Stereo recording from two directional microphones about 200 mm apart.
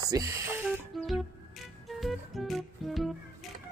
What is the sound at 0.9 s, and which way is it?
Music, centre (ahead or behind).